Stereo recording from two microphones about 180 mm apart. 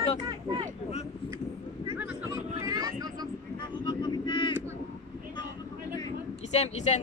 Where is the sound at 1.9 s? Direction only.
10° right (ahead or behind).